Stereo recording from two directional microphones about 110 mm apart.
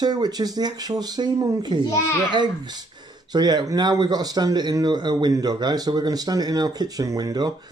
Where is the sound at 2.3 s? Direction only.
40° right (ahead or behind).